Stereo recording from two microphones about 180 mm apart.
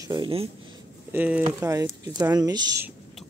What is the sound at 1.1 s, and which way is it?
Speech, 10° right (ahead or behind).